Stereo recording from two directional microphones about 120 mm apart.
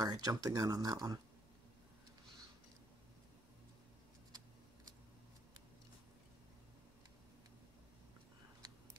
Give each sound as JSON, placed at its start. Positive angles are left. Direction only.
{"t": 0.0, "sound": "speech", "side_deg": -30}